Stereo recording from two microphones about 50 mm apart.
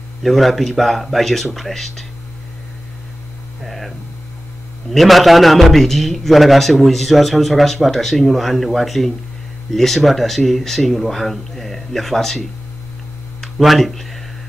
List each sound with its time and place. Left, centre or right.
0.2 s a man's voice: centre
3.6 s a man's voice: centre
4.9 s a man's voice: centre